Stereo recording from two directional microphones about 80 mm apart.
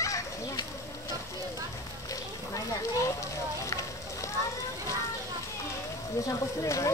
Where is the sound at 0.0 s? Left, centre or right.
Left.